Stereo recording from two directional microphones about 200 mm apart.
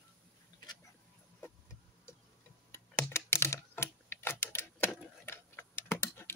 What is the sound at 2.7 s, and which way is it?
Typing, 10° left (ahead or behind).